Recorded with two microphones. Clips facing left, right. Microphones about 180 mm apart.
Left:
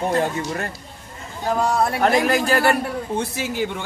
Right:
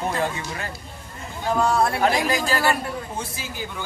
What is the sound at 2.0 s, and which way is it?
Speech, 55° left (ahead or behind).